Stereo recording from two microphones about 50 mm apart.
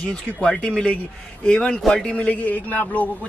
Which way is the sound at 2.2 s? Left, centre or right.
Left.